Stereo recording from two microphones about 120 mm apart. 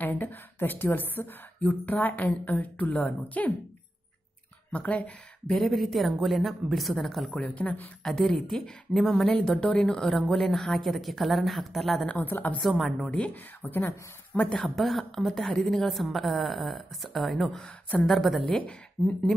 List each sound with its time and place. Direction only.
0.0 s speech: 15° left (ahead or behind)
4.7 s a woman's voice: 10° left (ahead or behind)
12.2 s speech: 15° left (ahead or behind)
12.6 s a woman's voice: centre (ahead or behind)